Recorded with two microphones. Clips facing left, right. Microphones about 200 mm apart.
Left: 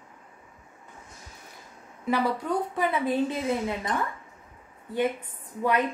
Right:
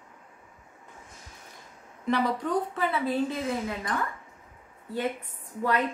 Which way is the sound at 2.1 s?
10° left (ahead or behind).